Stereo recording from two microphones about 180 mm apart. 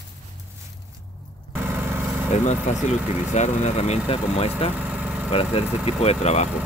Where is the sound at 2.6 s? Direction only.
40° left (ahead or behind).